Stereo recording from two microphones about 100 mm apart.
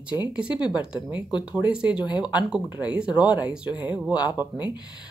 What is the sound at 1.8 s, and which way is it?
Speech, 50° left (ahead or behind).